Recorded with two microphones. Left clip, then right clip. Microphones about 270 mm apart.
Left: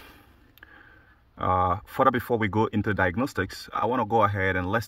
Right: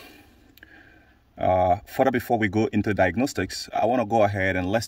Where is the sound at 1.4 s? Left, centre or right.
Centre.